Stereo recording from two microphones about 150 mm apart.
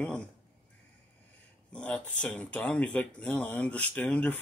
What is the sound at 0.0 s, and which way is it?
Speech, 10° left (ahead or behind).